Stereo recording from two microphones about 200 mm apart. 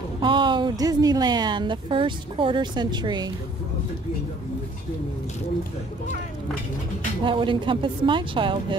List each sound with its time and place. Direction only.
0.2 s a woman's voice: 25° right (ahead or behind)
7.2 s a woman's voice: 25° right (ahead or behind)